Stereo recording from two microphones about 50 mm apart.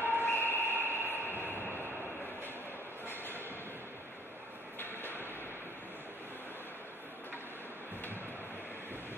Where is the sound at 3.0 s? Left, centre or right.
Left.